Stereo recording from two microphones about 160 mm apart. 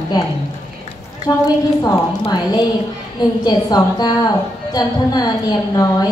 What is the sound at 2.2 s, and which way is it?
A woman's voice, 25° left (ahead or behind).